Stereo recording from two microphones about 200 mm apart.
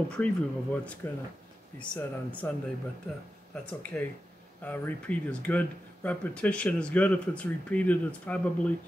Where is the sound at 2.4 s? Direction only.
10° left (ahead or behind).